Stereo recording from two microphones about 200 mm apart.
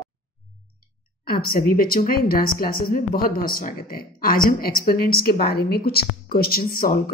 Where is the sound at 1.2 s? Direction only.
50° left (ahead or behind).